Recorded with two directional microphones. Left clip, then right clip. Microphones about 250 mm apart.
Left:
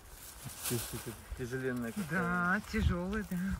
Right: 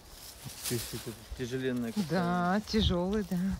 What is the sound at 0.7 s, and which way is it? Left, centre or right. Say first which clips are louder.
Speech: right 3 dB; left.